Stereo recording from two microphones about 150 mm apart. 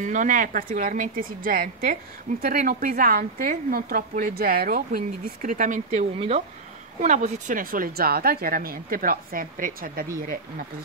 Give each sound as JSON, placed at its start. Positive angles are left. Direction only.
{"t": 0.0, "sound": "a woman's voice", "side_deg": -60}
{"t": 6.1, "sound": "speech", "side_deg": -40}
{"t": 7.0, "sound": "a woman's voice", "side_deg": -55}